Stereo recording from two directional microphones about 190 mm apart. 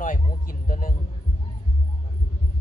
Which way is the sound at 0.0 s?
45° left (ahead or behind).